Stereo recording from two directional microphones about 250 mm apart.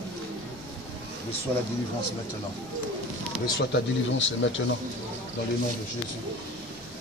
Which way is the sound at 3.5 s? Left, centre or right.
Left.